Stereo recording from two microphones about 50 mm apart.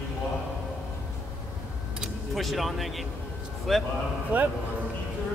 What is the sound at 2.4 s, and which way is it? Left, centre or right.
Speech, centre.